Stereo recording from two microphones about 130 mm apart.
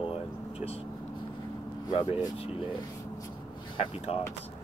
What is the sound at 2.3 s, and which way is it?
Speech, 45° left (ahead or behind).